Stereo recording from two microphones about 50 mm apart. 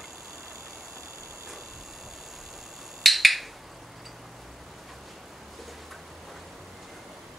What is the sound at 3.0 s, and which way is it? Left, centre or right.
Finger snapping, centre.